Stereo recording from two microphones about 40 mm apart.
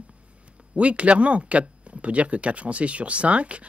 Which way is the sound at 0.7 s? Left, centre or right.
Right.